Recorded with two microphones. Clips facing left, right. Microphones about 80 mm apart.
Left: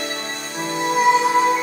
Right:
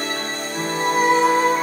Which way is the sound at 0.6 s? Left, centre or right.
Right.